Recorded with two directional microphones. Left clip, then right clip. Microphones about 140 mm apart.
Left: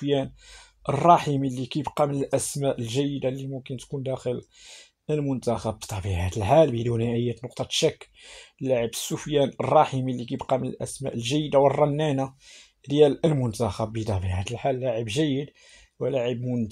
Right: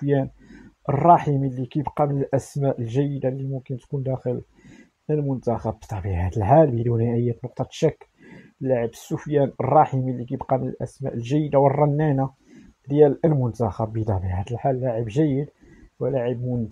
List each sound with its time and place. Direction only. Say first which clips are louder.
0.0 s speech: right 2 dB; 10° left (ahead or behind)